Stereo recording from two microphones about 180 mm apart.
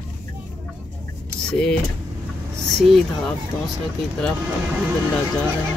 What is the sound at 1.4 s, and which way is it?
Speech, 5° left (ahead or behind).